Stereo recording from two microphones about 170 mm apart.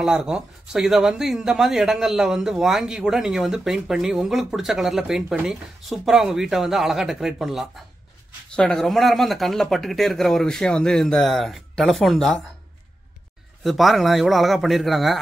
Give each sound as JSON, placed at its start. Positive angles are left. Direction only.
{"t": 0.0, "sound": "speech", "side_deg": -5}
{"t": 13.7, "sound": "speech", "side_deg": 0}